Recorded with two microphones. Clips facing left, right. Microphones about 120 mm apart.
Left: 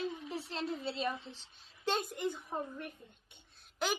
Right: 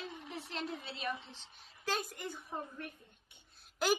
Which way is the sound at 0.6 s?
30° left (ahead or behind).